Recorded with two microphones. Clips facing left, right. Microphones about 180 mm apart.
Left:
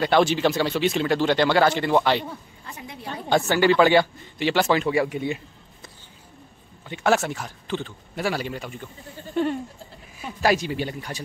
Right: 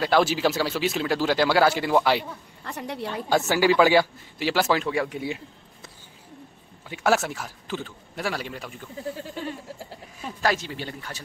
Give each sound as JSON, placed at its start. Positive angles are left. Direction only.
{"t": 0.0, "sound": "speech", "side_deg": -5}
{"t": 2.6, "sound": "a woman's voice", "side_deg": -70}
{"t": 3.3, "sound": "speech", "side_deg": -5}
{"t": 6.9, "sound": "speech", "side_deg": -5}
{"t": 9.3, "sound": "speech", "side_deg": 60}
{"t": 10.2, "sound": "speech", "side_deg": 10}